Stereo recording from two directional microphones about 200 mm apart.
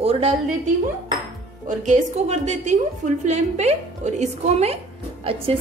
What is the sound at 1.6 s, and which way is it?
A woman's voice, 35° right (ahead or behind).